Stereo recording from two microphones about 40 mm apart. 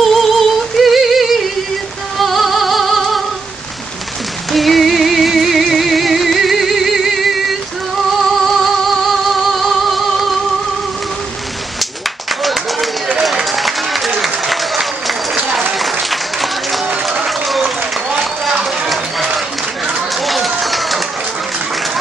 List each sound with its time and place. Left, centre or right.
0.0 s music: centre
4.5 s music: centre
12.4 s run: centre
13.5 s applause: centre
18.5 s a sound: centre
18.9 s a sound: centre
20.2 s run: centre